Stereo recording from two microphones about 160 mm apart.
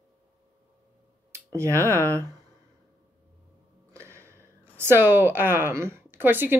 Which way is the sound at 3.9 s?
15° right (ahead or behind).